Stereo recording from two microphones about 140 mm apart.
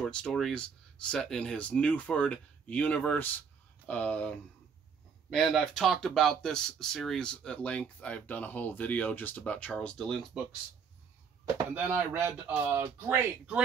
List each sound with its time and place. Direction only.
0.0 s speech: 5° left (ahead or behind)
11.7 s speech: 15° right (ahead or behind)